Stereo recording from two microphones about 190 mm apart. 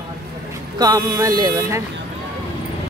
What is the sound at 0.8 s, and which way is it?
Speech, 20° right (ahead or behind).